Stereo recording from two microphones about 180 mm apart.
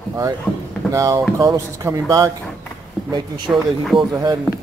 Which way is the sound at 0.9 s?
20° right (ahead or behind).